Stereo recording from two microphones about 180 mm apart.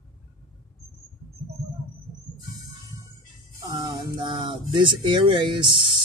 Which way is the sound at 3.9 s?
25° right (ahead or behind).